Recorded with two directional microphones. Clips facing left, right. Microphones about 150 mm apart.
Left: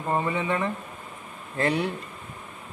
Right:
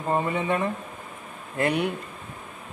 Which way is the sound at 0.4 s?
20° right (ahead or behind).